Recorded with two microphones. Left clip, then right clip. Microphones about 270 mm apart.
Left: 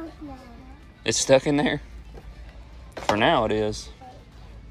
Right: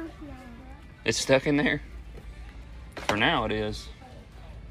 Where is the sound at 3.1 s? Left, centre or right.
Centre.